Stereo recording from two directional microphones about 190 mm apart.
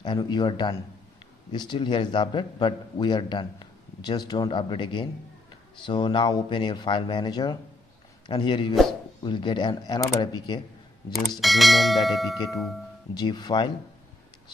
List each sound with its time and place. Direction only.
0.0 s a man's voice: 25° left (ahead or behind)
11.3 s speech: centre (ahead or behind)
13.1 s a man's voice: 20° left (ahead or behind)